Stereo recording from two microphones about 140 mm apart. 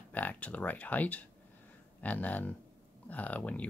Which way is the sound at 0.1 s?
10° left (ahead or behind).